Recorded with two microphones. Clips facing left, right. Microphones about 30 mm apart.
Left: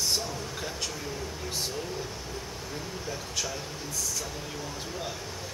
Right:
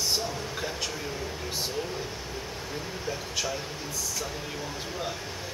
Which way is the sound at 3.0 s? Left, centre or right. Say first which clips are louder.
Right 3 dB; centre.